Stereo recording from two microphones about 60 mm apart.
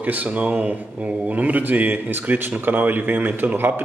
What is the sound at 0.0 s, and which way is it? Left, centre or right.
Speech, right.